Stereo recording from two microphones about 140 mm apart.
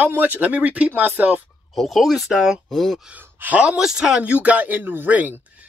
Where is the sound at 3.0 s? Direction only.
15° right (ahead or behind).